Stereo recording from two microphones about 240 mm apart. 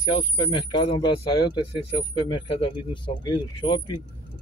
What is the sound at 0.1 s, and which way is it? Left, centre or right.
Speech, centre.